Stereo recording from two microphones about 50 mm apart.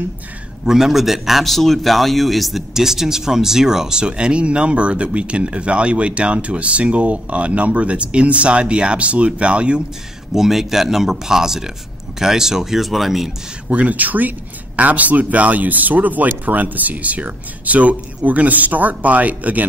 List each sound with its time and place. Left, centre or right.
0.7 s speech: centre
10.3 s speech: centre
13.7 s speech: right